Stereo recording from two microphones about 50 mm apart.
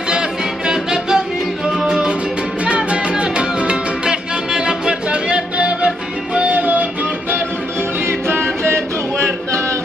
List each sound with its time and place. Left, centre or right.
0.7 s music: centre
6.5 s music: right
8.1 s a capella: right